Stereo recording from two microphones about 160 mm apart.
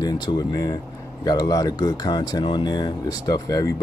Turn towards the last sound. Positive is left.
turn(degrees=20)  # may be behind; listen again after turning